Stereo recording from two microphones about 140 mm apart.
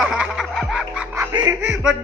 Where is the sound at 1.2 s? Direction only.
25° right (ahead or behind).